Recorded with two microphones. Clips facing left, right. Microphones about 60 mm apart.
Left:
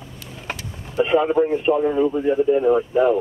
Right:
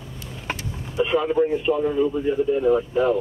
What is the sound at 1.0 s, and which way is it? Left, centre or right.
Speech, left.